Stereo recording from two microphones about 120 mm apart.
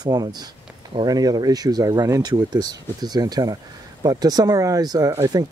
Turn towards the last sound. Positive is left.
turn(degrees=-30)  # may be behind; listen again after turning